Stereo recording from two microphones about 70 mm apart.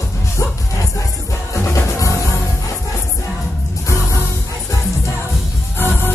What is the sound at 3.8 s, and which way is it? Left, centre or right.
Music, left.